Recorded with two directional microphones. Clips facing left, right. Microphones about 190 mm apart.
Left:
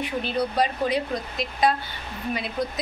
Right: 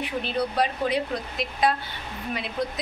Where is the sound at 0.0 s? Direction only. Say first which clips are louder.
Left 1 dB; centre (ahead or behind).